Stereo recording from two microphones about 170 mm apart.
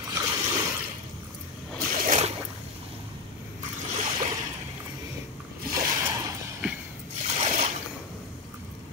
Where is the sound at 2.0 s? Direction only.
40° right (ahead or behind).